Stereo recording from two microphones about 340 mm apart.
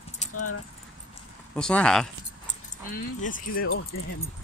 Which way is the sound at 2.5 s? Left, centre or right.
Left.